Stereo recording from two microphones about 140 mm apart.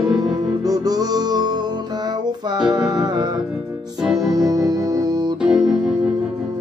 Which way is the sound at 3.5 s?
5° right (ahead or behind).